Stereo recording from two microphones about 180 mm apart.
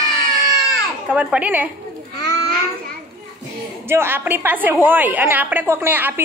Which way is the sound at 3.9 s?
10° right (ahead or behind).